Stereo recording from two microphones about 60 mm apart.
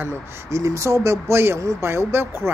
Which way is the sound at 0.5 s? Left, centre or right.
Right.